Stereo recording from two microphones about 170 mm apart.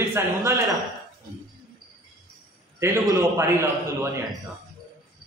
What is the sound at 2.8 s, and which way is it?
A man's voice, 20° right (ahead or behind).